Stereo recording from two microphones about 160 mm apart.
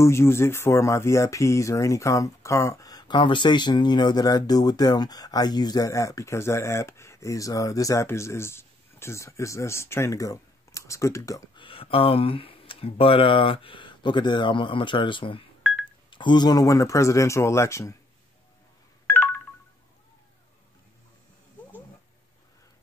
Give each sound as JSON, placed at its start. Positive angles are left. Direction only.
{"t": 0.0, "sound": "speech", "side_deg": 15}
{"t": 11.6, "sound": "speech", "side_deg": 35}